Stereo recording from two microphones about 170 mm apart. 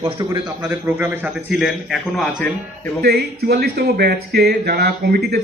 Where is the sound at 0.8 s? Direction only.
15° right (ahead or behind); by 2.5 s 5° left (ahead or behind).